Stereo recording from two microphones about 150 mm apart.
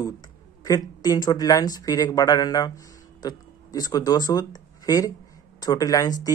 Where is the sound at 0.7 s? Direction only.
25° left (ahead or behind).